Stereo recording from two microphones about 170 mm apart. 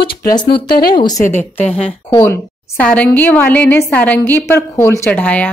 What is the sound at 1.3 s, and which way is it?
A woman's voice, 10° left (ahead or behind).